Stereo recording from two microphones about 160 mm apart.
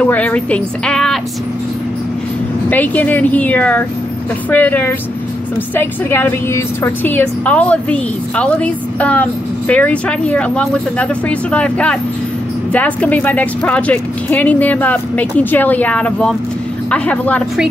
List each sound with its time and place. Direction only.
0.0 s a woman's voice: 10° left (ahead or behind)
2.7 s a woman's voice: 10° left (ahead or behind)